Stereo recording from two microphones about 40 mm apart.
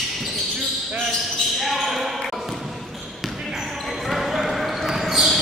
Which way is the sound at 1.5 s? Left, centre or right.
Centre.